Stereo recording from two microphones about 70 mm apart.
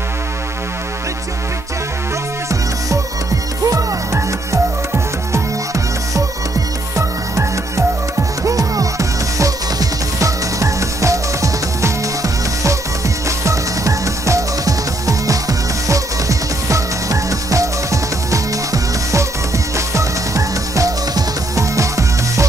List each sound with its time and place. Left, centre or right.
3.6 s music: right
7.0 s music: right